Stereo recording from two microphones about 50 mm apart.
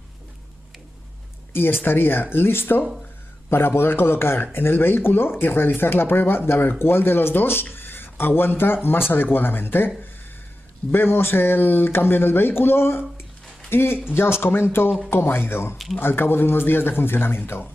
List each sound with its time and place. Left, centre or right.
1.5 s speech: left
10.9 s speech: left